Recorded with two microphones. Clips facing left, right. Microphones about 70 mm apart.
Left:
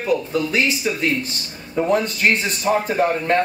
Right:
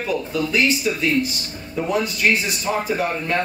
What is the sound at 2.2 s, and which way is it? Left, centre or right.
Speech, left.